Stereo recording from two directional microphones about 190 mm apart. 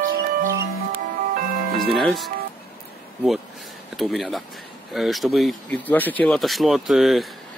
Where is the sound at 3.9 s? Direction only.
Centre (ahead or behind).